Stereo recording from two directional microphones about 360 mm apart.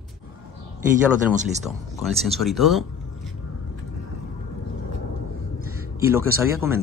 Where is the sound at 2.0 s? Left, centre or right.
Centre.